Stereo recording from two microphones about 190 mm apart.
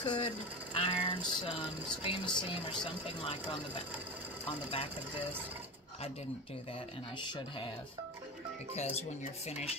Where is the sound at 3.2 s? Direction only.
30° left (ahead or behind).